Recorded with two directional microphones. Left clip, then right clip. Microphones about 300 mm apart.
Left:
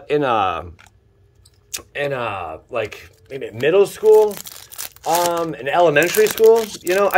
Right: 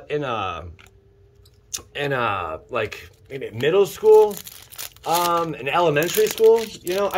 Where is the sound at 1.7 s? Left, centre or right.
Centre.